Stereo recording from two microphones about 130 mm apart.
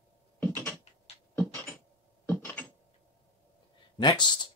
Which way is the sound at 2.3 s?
10° left (ahead or behind).